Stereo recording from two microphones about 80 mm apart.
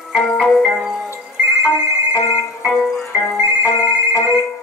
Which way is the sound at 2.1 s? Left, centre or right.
Left.